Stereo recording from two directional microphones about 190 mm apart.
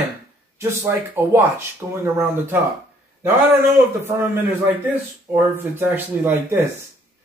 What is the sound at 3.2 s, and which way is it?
Speech, 15° right (ahead or behind).